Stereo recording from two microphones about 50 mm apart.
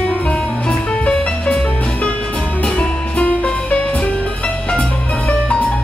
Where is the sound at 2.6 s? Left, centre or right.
Left.